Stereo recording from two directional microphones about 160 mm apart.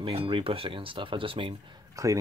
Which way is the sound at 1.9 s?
20° right (ahead or behind).